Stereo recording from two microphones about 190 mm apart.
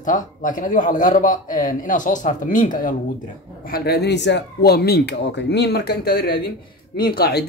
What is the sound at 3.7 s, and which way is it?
Speech, 60° left (ahead or behind).